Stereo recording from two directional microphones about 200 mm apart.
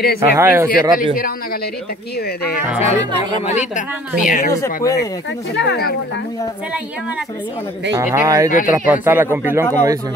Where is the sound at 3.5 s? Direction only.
35° left (ahead or behind).